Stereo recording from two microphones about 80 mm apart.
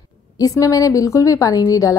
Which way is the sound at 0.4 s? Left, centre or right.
Left.